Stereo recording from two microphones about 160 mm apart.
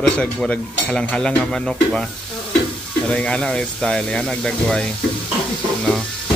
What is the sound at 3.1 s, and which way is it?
Speech, 5° left (ahead or behind).